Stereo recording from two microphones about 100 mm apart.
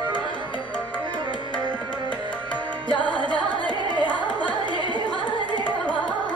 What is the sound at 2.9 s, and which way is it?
Music, 10° left (ahead or behind).